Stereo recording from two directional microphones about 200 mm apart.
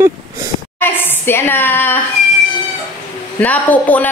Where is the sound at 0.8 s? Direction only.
10° left (ahead or behind).